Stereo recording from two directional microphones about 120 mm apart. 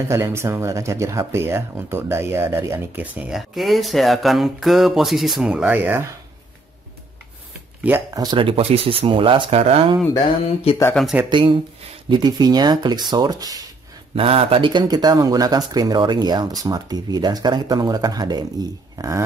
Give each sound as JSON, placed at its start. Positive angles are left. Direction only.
{"t": 0.1, "sound": "speech", "side_deg": -20}
{"t": 3.3, "sound": "speech", "side_deg": 0}
{"t": 8.1, "sound": "speech", "side_deg": -30}
{"t": 8.4, "sound": "speech", "side_deg": -50}
{"t": 10.7, "sound": "speech", "side_deg": 55}
{"t": 11.2, "sound": "speech", "side_deg": -45}
{"t": 14.1, "sound": "speech", "side_deg": -50}